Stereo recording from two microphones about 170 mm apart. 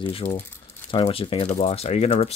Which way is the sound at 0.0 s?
30° left (ahead or behind).